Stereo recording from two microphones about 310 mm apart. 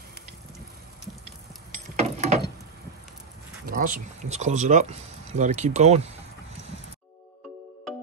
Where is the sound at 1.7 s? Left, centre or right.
Right.